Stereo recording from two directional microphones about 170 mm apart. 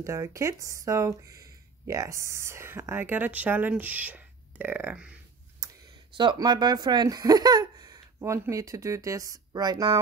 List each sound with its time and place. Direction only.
0.0 s speech: 15° right (ahead or behind)
5.6 s a sound: 20° right (ahead or behind)
6.1 s speech: 25° right (ahead or behind)